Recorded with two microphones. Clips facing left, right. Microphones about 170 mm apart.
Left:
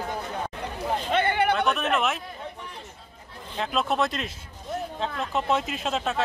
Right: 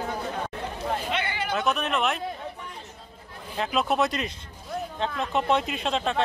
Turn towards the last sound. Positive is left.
turn(degrees=5)  # may be behind; listen again after turning